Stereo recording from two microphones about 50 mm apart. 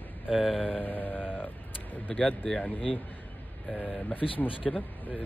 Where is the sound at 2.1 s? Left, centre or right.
Left.